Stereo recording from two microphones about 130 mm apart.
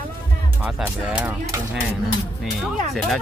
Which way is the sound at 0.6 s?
10° right (ahead or behind).